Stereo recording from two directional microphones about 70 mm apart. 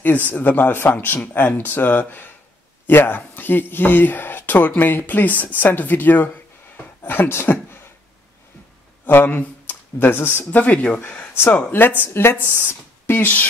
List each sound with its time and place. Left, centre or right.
0.0 s speech: left
9.0 s speech: left